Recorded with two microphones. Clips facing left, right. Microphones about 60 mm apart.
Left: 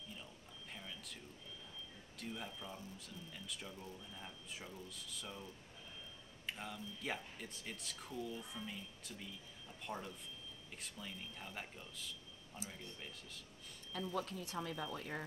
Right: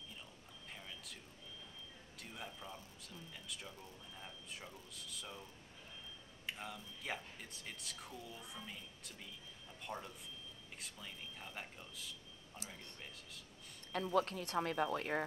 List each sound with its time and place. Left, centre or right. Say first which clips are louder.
0.7 s whispering: left 2 dB; centre
2.1 s speech: left 3 dB; centre
14.1 s speech: right 8 dB; right